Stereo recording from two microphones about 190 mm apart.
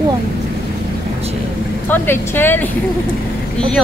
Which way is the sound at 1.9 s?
10° left (ahead or behind).